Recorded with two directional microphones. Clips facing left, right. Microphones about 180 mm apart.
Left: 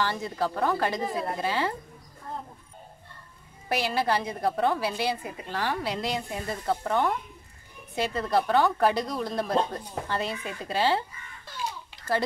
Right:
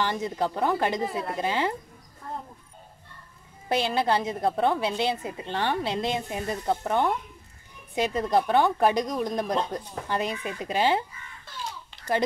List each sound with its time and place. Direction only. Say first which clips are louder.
0.0 s a woman's voice: right 1 dB; 20° right (ahead or behind)
3.6 s a woman's voice: right 2 dB; 25° right (ahead or behind)